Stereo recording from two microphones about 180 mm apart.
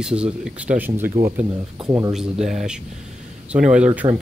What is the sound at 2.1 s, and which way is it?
Speech, 5° right (ahead or behind).